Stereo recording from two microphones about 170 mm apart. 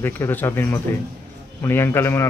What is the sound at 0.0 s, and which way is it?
A man's voice, 10° left (ahead or behind).